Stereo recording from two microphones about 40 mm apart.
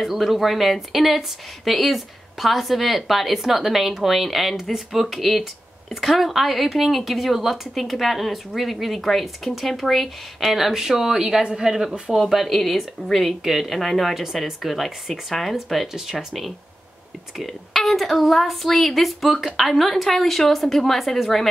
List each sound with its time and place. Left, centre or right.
0.0 s speech: centre
12.2 s speech: centre
17.4 s speech: centre